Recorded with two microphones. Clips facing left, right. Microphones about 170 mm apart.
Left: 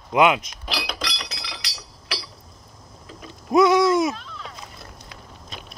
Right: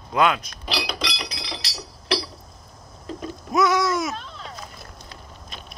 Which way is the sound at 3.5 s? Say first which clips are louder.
Left 5 dB; 25° left (ahead or behind).